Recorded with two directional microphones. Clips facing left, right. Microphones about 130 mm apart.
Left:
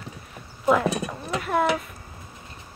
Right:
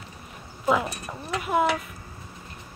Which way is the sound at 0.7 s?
5° right (ahead or behind).